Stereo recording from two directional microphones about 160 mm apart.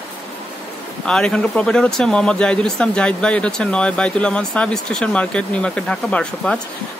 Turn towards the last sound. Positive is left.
turn(degrees=5)  # may be behind; listen again after turning